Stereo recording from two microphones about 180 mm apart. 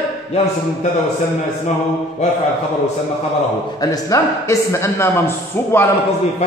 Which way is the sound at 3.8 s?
20° left (ahead or behind).